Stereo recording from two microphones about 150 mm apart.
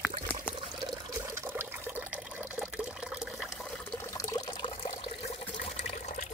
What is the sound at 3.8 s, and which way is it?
Water, 15° left (ahead or behind).